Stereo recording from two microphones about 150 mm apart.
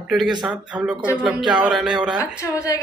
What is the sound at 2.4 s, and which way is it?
Speech, 15° left (ahead or behind).